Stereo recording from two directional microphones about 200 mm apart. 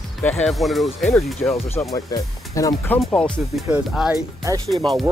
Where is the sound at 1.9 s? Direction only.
15° left (ahead or behind).